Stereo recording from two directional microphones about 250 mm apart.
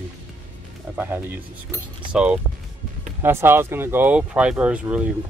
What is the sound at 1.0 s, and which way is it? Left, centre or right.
Speech, centre.